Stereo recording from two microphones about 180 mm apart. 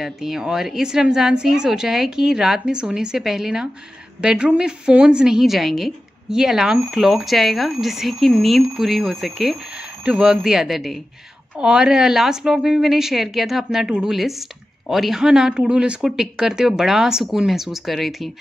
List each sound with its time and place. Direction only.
0.0 s a woman's voice: centre (ahead or behind)